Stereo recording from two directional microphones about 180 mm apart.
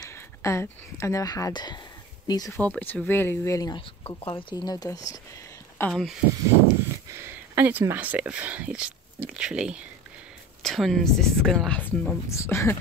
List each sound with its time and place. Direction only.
0.0 s speech: 15° left (ahead or behind)
2.6 s speech: 10° left (ahead or behind)
4.0 s speech: 30° left (ahead or behind)
5.8 s speech: centre (ahead or behind)
7.1 s speech: 10° right (ahead or behind); by 12.7 s 15° left (ahead or behind)